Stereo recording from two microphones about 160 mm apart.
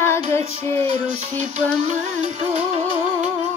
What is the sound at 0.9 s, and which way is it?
Music, 45° right (ahead or behind).